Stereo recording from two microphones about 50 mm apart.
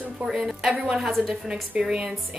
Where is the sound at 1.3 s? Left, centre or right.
Centre.